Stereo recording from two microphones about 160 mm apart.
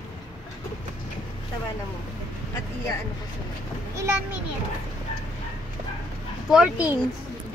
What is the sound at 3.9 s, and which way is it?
Speech, 15° right (ahead or behind).